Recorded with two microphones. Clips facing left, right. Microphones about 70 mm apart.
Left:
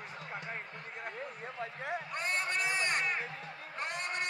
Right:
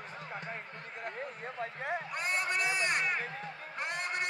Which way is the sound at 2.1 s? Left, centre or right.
Centre.